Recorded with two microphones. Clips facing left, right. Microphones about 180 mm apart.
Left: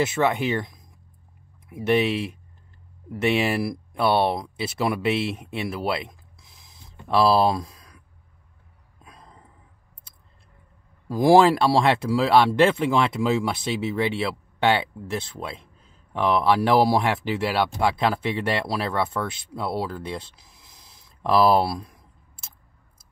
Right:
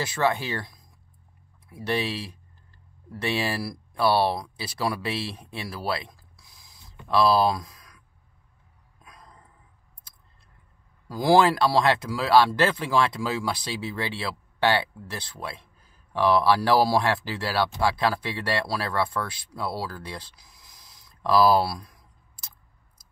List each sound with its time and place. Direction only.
0.0 s speech: 20° left (ahead or behind)
9.0 s a sound: 25° left (ahead or behind)
11.1 s speech: 25° left (ahead or behind)